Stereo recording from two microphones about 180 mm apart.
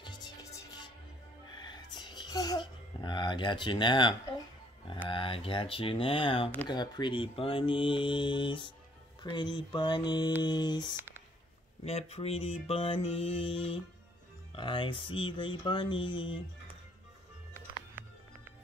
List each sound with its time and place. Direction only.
0.0 s music: 20° left (ahead or behind)
1.6 s whispering: 25° left (ahead or behind)
3.0 s speech: 25° left (ahead or behind)
5.1 s speech: 30° left (ahead or behind)
11.0 s a sound: 10° right (ahead or behind)
11.8 s music: 35° left (ahead or behind)
14.5 s speech: 30° left (ahead or behind)